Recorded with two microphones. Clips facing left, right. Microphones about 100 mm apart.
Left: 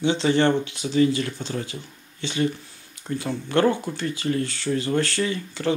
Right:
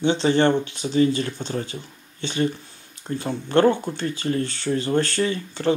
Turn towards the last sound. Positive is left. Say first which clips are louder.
# right 2 dB
turn(degrees=-35)  # may be behind; listen again after turning